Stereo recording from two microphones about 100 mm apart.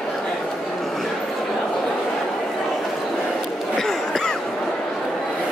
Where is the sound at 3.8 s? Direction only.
5° left (ahead or behind).